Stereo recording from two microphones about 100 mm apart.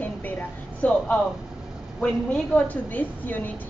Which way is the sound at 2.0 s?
10° left (ahead or behind).